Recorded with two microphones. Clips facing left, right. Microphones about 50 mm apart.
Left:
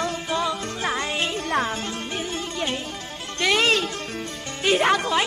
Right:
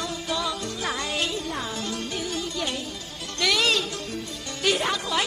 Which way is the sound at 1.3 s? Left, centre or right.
Left.